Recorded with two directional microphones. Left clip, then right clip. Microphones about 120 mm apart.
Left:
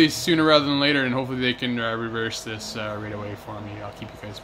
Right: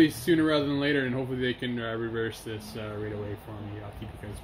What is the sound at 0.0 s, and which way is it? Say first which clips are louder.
Speech: left 4 dB; 40° left (ahead or behind).